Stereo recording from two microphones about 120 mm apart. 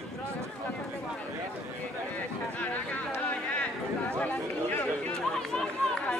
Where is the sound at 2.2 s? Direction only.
15° left (ahead or behind).